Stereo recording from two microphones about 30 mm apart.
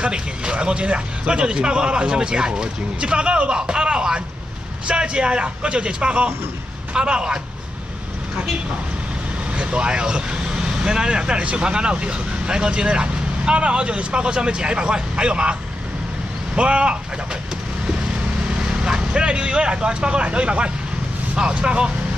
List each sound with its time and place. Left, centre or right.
0.0 s a man's voice: right
9.6 s a man's voice: right
16.5 s a man's voice: right
18.6 s a man's voice: right